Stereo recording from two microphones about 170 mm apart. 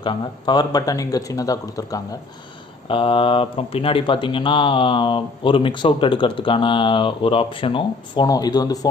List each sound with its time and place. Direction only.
0.0 s speech: 25° left (ahead or behind)